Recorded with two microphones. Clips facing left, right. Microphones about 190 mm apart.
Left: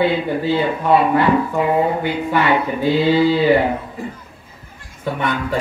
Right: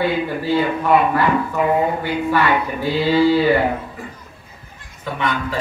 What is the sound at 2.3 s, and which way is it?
Speech, 20° left (ahead or behind).